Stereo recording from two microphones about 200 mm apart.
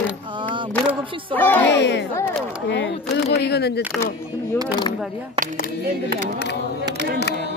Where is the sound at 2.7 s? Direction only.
60° left (ahead or behind).